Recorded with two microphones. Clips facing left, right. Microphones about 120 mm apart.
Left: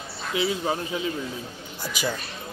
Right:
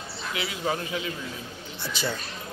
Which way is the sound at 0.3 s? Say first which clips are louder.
Left 4 dB; 25° left (ahead or behind).